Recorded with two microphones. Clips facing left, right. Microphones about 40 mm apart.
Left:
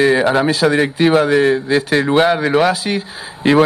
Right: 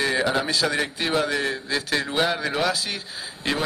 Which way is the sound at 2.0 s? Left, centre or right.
Left.